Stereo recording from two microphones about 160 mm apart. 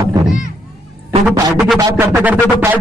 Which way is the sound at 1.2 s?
Centre (ahead or behind).